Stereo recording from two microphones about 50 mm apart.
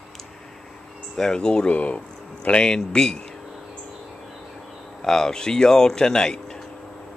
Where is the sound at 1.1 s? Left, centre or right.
Centre.